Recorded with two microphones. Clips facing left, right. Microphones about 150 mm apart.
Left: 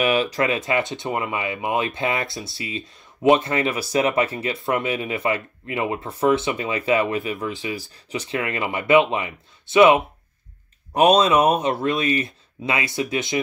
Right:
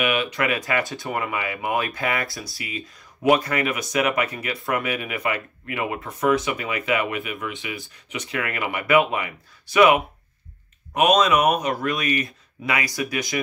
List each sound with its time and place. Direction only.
0.0 s speech: 35° left (ahead or behind)